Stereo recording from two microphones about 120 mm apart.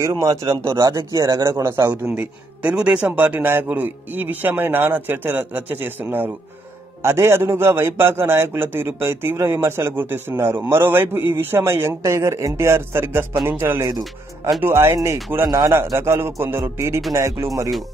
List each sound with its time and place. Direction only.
0.0 s a man's voice: 25° right (ahead or behind)
2.1 s a man's voice: 10° right (ahead or behind)
15.4 s a man's voice: 35° right (ahead or behind)
16.0 s a man's voice: 20° right (ahead or behind)